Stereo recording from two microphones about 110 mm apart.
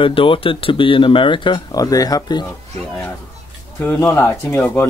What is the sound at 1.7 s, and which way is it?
Speech, 35° left (ahead or behind).